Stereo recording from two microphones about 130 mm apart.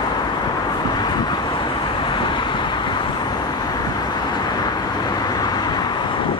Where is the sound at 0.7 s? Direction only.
35° left (ahead or behind).